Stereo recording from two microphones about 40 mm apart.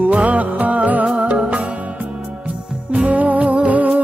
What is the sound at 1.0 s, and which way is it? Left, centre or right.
Music, right.